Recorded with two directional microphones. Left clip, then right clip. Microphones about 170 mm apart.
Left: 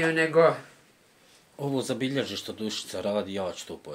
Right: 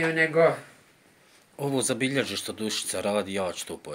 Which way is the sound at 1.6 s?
5° right (ahead or behind).